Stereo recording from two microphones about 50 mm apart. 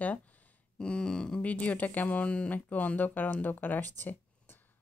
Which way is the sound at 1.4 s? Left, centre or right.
Left.